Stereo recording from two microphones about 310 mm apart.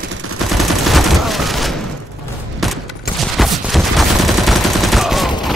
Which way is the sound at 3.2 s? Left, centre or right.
Centre.